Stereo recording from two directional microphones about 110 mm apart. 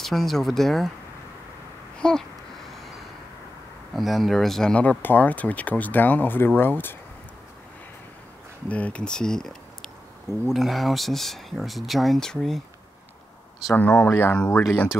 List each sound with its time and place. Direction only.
0.0 s speech: centre (ahead or behind)
2.0 s babbling: 5° left (ahead or behind)
3.9 s speech: centre (ahead or behind); by 7.0 s 20° left (ahead or behind)
8.6 s speech: 10° left (ahead or behind)
13.7 s speech: 15° left (ahead or behind)